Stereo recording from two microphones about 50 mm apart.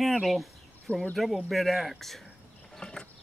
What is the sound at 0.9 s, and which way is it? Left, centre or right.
Speech, left.